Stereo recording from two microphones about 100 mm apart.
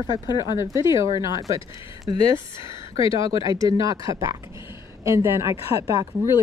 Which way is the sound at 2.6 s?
55° left (ahead or behind).